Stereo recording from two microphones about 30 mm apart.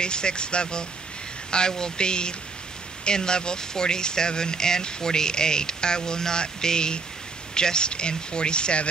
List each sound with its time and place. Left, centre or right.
0.0 s speech: left